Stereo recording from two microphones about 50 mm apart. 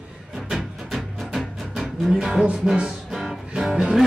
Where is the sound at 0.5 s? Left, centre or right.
Centre; by 2.9 s right.